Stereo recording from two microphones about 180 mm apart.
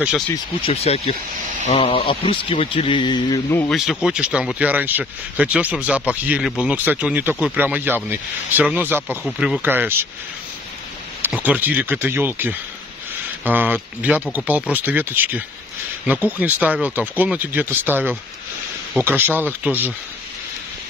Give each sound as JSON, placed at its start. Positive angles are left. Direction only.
{"t": 0.6, "sound": "a man's voice", "side_deg": 35}
{"t": 3.7, "sound": "speech", "side_deg": 0}
{"t": 11.2, "sound": "speech", "side_deg": -10}